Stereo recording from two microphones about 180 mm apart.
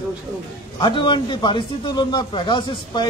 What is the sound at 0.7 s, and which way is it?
A man's voice, 25° left (ahead or behind).